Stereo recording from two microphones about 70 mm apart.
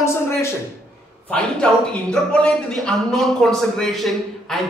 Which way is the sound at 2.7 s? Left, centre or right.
Centre.